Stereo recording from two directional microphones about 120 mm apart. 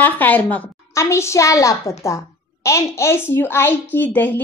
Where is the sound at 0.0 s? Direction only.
15° left (ahead or behind).